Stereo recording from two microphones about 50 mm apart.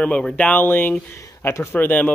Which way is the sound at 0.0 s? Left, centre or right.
Centre.